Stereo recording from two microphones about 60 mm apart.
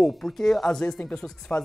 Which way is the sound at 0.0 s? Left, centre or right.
Centre.